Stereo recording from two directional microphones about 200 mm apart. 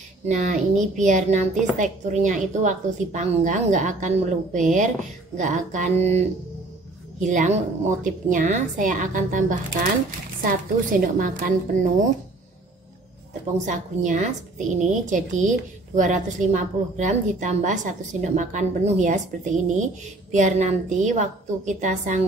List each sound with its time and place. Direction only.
0.3 s a woman's voice: 35° right (ahead or behind)
13.7 s a woman's voice: 40° right (ahead or behind)